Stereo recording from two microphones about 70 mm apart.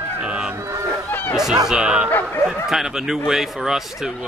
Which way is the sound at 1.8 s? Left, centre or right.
Centre.